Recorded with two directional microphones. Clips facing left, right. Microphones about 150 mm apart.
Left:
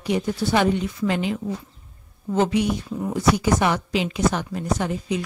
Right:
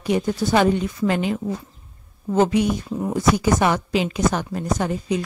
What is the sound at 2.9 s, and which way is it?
Speech, 30° right (ahead or behind).